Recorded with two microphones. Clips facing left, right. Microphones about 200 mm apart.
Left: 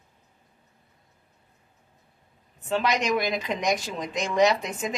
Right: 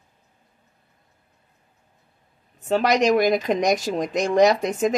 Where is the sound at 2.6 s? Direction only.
40° right (ahead or behind).